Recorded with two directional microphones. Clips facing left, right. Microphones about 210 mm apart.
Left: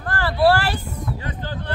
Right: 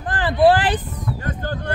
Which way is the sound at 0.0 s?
20° right (ahead or behind).